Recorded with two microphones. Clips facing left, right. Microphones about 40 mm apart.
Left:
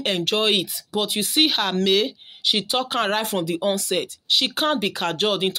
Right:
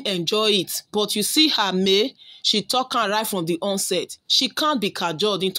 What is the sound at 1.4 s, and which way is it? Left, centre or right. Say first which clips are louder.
Speech: right 1 dB; centre.